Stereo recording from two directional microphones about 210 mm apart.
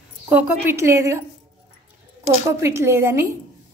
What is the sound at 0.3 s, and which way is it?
Speech, 10° right (ahead or behind).